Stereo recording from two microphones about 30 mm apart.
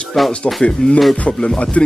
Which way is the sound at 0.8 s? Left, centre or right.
Left.